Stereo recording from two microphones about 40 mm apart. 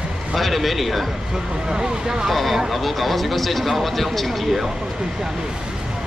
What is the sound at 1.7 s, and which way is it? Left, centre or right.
Speech, centre.